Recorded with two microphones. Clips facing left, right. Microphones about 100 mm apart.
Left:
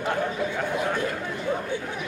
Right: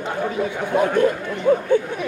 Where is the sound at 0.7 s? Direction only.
50° right (ahead or behind).